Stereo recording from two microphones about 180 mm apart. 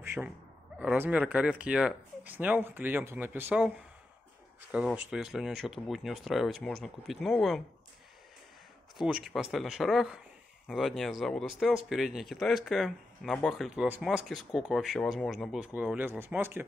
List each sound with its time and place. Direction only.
0.0 s a sound: 10° right (ahead or behind)
0.7 s speech: 10° right (ahead or behind)
4.7 s speech: 5° right (ahead or behind)
8.9 s speech: centre (ahead or behind)